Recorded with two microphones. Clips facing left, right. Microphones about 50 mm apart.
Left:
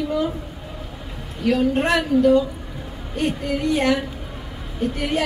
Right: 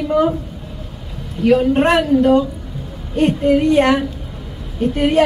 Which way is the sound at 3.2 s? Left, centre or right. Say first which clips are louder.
Right 9 dB; right.